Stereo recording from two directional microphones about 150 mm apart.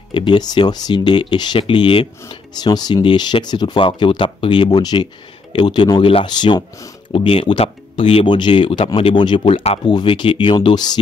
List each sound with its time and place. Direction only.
0.1 s speech: 30° left (ahead or behind)